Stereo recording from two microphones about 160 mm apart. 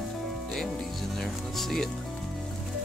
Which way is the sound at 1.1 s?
Centre (ahead or behind).